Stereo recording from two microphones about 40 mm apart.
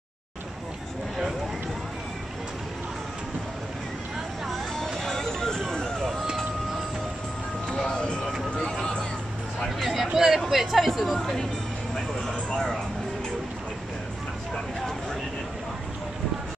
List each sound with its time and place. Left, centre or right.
4.5 s vehicle: centre
7.6 s music: centre
8.5 s a sound: centre
9.8 s a sound: centre
10.5 s speech: centre
11.1 s speech: centre